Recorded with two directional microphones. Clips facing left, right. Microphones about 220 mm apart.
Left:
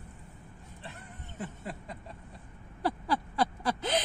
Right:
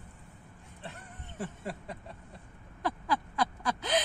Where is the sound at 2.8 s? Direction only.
35° left (ahead or behind).